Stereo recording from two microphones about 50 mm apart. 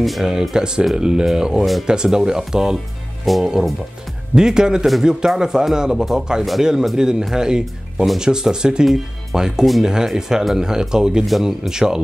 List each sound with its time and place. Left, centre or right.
0.2 s speech: centre
1.6 s speech: centre
1.9 s speech: centre
3.3 s speech: centre
4.4 s speech: centre